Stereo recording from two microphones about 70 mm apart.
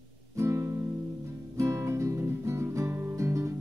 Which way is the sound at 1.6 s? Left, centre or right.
Right.